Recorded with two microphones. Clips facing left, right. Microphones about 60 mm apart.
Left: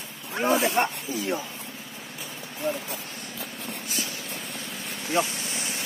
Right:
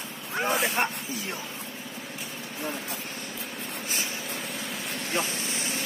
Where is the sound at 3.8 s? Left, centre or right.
Right.